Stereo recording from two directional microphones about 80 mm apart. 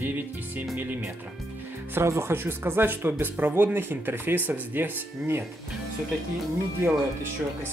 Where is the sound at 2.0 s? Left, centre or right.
Right.